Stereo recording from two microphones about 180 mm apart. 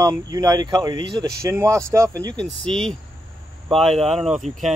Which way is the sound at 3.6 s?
35° right (ahead or behind).